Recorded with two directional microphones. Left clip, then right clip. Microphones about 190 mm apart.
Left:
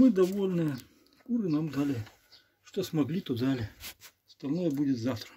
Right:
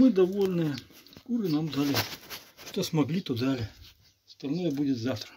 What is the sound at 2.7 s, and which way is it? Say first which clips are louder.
Speech: right 2 dB; 15° right (ahead or behind).